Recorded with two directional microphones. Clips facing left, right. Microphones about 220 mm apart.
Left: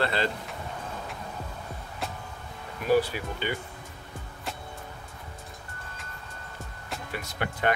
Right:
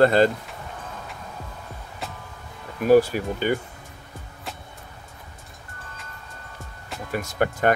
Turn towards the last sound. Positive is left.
turn(degrees=-45)  # may be behind; listen again after turning